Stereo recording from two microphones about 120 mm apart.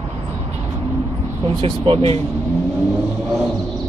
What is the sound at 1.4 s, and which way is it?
Speech, 45° right (ahead or behind).